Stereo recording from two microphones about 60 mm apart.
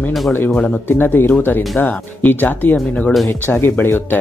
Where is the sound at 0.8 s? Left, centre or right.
Left.